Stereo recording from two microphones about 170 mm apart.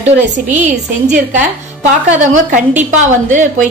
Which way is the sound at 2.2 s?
45° right (ahead or behind).